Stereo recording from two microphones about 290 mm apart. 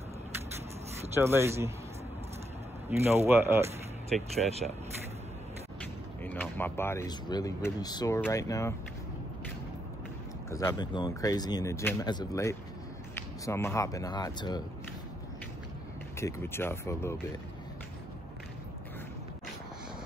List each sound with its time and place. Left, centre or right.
1.1 s speech: centre
3.0 s speech: centre
4.5 s speech: right
6.2 s speech: centre
10.5 s speech: centre
16.2 s speech: centre